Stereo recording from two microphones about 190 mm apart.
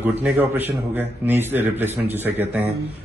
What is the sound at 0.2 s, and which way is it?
A man's voice, 10° right (ahead or behind).